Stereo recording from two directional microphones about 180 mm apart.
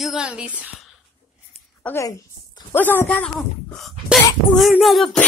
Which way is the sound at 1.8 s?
15° left (ahead or behind).